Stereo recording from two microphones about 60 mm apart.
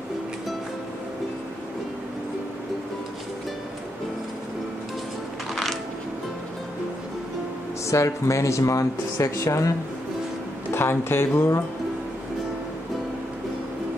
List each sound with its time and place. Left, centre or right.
5.5 s a sound: centre
7.9 s speech: left
10.7 s speech: left